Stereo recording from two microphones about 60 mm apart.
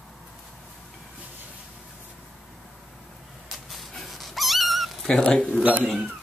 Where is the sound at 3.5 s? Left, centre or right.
Centre.